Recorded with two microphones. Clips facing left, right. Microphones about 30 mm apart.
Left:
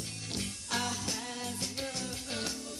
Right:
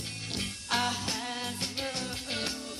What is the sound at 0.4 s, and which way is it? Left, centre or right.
Music, right.